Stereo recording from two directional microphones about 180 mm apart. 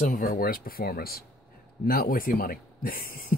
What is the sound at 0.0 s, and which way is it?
Speech, 50° left (ahead or behind).